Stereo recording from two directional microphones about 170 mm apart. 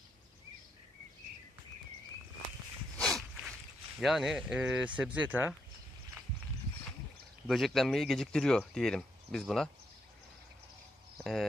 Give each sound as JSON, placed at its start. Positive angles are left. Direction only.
{"t": 3.0, "sound": "walk", "side_deg": 0}
{"t": 4.0, "sound": "speech", "side_deg": 0}
{"t": 7.4, "sound": "speech", "side_deg": 0}